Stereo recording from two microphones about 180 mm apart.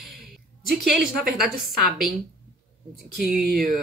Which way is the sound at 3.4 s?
55° right (ahead or behind).